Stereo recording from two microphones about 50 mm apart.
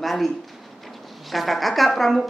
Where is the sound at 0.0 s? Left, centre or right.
Centre.